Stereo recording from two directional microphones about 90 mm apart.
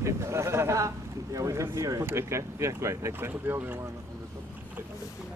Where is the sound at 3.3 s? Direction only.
20° right (ahead or behind).